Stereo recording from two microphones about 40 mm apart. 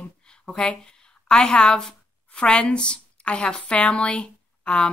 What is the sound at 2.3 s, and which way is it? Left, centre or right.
A woman's voice, left.